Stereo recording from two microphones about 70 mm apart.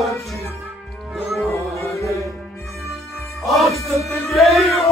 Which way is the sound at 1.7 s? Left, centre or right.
Left.